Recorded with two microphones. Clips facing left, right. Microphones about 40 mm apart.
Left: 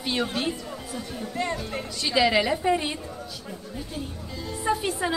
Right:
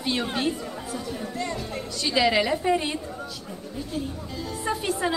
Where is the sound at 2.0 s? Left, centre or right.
Centre.